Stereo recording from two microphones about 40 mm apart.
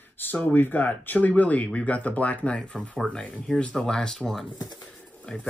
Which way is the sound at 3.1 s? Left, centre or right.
Left.